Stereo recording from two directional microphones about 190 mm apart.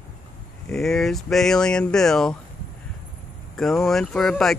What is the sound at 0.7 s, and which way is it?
Speech, centre (ahead or behind).